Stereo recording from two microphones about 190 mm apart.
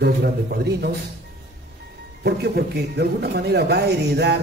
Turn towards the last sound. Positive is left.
turn(degrees=-60)  # may be behind; listen again after turning